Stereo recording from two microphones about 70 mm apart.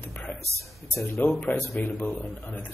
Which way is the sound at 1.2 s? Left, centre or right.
Left.